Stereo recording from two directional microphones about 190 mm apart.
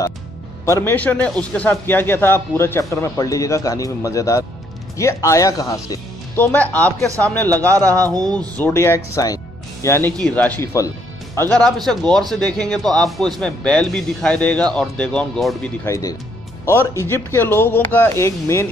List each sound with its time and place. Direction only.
0.7 s speech: 15° left (ahead or behind)
8.1 s speech: 20° right (ahead or behind)
8.5 s speech: 10° left (ahead or behind)
15.9 s speech: 15° left (ahead or behind)